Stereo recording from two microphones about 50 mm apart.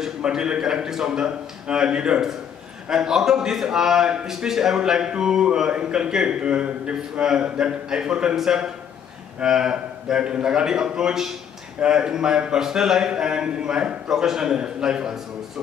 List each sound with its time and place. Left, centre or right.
0.0 s a man's voice: centre